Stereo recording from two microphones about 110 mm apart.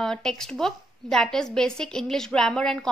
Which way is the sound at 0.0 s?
5° left (ahead or behind).